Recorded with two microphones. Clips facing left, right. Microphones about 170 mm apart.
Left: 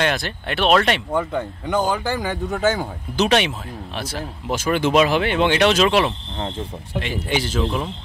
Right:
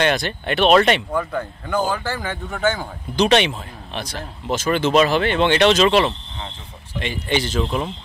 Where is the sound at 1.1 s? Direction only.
20° left (ahead or behind).